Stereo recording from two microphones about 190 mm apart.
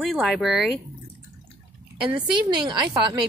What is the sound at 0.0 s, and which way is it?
Speech, centre (ahead or behind).